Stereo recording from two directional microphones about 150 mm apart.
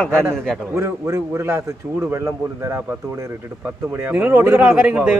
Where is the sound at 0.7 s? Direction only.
20° right (ahead or behind).